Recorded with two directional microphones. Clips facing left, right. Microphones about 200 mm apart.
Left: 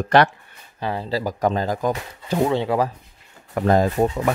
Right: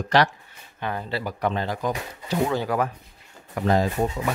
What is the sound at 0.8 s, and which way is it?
Speech, 30° left (ahead or behind).